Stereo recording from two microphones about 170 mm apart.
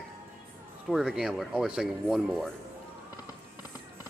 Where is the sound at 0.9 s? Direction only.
5° right (ahead or behind).